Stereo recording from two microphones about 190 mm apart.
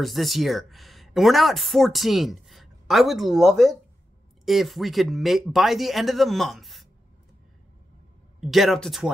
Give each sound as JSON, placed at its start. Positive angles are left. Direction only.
{"t": 0.0, "sound": "speech", "side_deg": 0}
{"t": 8.4, "sound": "speech", "side_deg": 0}